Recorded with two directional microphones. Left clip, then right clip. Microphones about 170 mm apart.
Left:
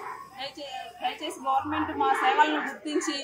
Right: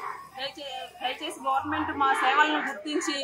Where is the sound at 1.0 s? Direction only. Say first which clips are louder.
Even; centre (ahead or behind).